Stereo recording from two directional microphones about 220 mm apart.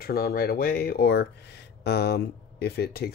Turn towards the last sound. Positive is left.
turn(degrees=45)  # may be behind; listen again after turning